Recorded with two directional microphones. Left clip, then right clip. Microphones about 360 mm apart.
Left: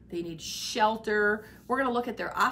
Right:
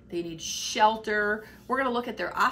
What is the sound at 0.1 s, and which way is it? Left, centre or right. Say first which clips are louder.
Speech: right 3 dB; centre.